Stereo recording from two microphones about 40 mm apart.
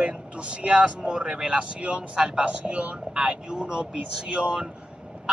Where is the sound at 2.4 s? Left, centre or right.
Right.